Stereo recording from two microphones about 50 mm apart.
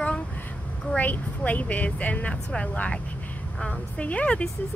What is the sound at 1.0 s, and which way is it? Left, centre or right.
A woman's voice, left.